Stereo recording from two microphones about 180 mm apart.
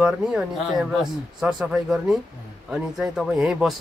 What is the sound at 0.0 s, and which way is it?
Speech, 5° right (ahead or behind).